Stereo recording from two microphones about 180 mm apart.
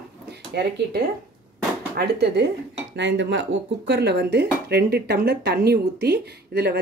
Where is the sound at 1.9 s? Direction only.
65° right (ahead or behind).